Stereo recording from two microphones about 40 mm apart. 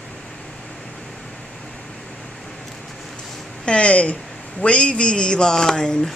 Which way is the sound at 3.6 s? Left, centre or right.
Left.